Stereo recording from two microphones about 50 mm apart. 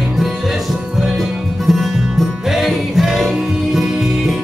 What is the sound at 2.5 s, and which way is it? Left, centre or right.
Music, centre.